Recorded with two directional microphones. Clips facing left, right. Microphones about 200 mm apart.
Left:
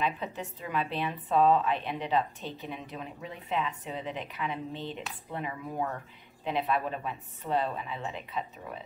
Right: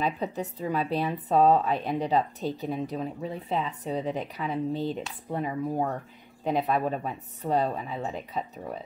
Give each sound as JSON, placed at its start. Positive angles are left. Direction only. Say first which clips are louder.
{"t": 0.0, "sound": "speech", "louder": "right 4 dB", "side_deg": -40}